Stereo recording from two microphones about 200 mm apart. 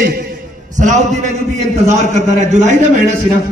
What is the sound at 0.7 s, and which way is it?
A man's voice, 40° right (ahead or behind).